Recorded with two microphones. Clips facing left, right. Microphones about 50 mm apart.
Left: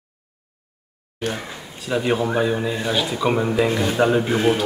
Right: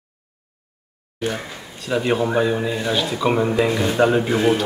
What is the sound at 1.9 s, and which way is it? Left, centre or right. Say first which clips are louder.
Speech: right 1 dB; centre.